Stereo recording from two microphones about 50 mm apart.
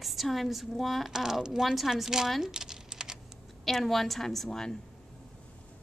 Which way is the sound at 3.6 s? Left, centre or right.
Centre.